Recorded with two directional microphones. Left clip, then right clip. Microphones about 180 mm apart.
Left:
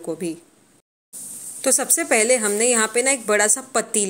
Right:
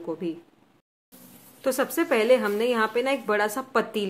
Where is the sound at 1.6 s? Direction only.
15° left (ahead or behind).